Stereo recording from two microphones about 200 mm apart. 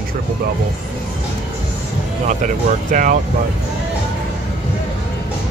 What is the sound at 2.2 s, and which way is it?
Speech, 40° right (ahead or behind).